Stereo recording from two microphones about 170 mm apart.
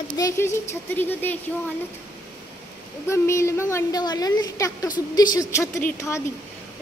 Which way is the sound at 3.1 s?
15° left (ahead or behind).